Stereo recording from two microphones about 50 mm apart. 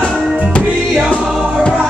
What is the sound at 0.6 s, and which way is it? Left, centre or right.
Music, right.